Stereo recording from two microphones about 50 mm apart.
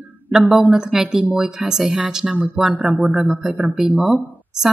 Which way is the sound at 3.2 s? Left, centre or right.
Right.